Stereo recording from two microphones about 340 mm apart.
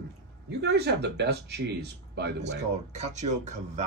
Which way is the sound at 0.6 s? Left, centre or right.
Right.